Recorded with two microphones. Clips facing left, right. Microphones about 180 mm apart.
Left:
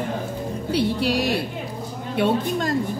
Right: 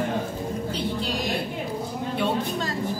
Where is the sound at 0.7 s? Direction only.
70° left (ahead or behind).